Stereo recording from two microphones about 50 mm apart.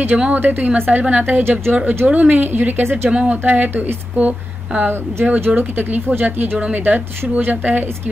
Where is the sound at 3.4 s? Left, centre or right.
Right.